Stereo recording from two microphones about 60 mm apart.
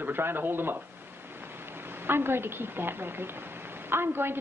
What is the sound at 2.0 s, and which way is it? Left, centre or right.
A woman's voice, right.